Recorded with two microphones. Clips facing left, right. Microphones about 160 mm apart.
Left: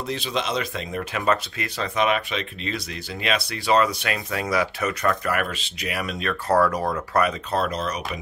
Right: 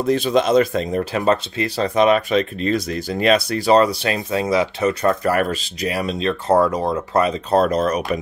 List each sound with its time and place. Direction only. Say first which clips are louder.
0.0 s speech: right 10 dB; 50° right (ahead or behind); by 7.3 s 25° right (ahead or behind)
7.5 s speech: right 13 dB; 45° right (ahead or behind)